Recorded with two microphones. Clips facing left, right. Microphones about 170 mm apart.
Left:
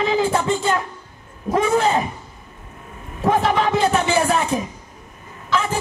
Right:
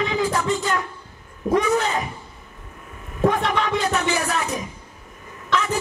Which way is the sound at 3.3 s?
Centre (ahead or behind).